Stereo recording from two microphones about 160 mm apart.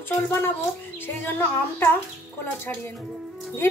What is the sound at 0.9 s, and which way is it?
A woman's voice, 10° left (ahead or behind).